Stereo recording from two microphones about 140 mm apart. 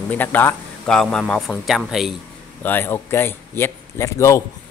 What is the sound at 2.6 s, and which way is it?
Speech, 15° left (ahead or behind).